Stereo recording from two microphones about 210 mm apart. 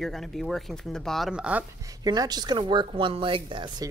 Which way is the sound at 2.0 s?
20° right (ahead or behind).